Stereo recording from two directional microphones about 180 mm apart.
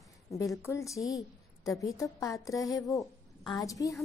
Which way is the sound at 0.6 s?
15° left (ahead or behind).